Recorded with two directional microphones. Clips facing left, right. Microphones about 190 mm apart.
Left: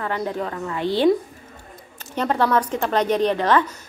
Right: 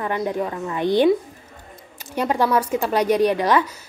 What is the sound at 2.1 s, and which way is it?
A woman's voice, 10° right (ahead or behind).